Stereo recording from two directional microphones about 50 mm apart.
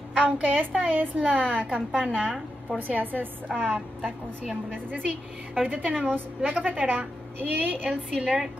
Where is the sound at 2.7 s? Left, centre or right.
Right.